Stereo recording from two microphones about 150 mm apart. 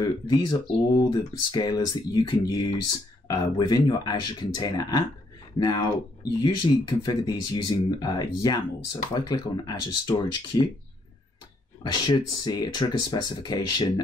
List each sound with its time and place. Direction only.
0.0 s speech: 25° left (ahead or behind)
11.8 s speech: 25° left (ahead or behind)